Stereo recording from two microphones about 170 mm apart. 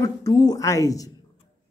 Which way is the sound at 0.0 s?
20° left (ahead or behind).